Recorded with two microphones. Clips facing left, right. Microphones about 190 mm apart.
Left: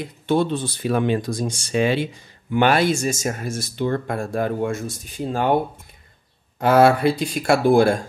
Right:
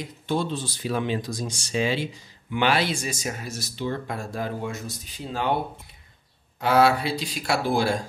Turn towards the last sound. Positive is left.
turn(degrees=55)  # may be behind; listen again after turning